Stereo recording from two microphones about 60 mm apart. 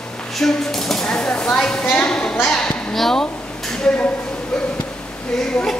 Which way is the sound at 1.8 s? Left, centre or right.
Left.